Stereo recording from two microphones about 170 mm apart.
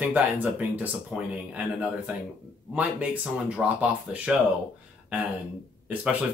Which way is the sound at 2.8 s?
10° right (ahead or behind).